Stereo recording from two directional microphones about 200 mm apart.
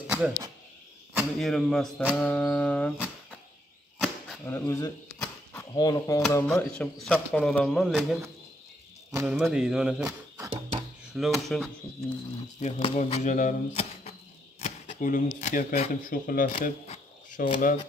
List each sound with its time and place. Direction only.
0.0 s a sound: 5° right (ahead or behind)
1.1 s speech: centre (ahead or behind)
4.5 s speech: 15° left (ahead or behind)
5.2 s a sound: 10° left (ahead or behind)
6.3 s speech: 10° left (ahead or behind)
9.1 s speech: 15° right (ahead or behind)
10.0 s a sound: 15° right (ahead or behind)
11.1 s speech: centre (ahead or behind)
12.5 s speech: 35° left (ahead or behind)